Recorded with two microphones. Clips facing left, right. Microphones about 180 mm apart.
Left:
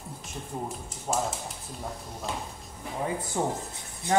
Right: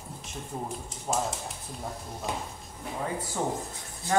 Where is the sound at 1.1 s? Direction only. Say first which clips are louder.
Even; centre (ahead or behind).